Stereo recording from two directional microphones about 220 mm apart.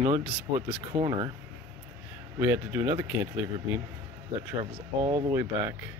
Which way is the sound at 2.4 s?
10° right (ahead or behind).